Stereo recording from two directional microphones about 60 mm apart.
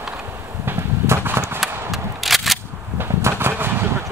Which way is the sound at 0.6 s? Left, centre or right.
Right.